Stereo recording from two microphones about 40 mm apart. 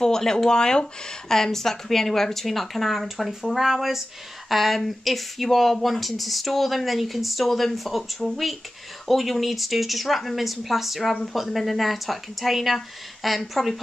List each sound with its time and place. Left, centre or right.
0.0 s speech: centre